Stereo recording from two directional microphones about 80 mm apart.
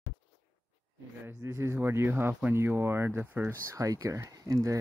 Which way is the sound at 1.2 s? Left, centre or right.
Right.